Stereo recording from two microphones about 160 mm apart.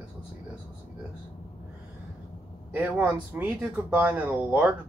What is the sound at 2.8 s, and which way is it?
Speech, 10° right (ahead or behind).